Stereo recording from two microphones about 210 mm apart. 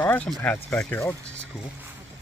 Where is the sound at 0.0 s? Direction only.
5° left (ahead or behind).